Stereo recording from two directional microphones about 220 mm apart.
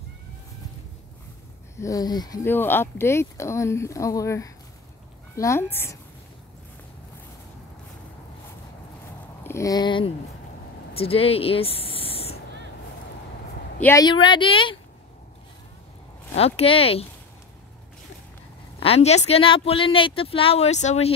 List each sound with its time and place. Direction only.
1.8 s speech: 15° left (ahead or behind)
9.4 s speech: 15° left (ahead or behind)
13.7 s speech: 15° left (ahead or behind)
16.3 s speech: 25° left (ahead or behind)
18.8 s speech: 30° left (ahead or behind)